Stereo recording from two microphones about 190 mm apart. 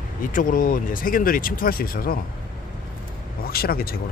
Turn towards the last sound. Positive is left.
turn(degrees=50)  # may be behind; listen again after turning